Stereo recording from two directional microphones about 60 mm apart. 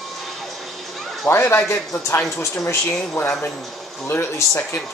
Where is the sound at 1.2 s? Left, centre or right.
Left.